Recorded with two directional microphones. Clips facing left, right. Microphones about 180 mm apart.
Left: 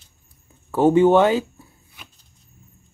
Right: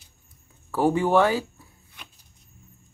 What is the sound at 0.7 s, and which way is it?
Speech, 20° left (ahead or behind).